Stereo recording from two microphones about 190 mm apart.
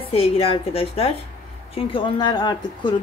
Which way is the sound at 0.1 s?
30° left (ahead or behind).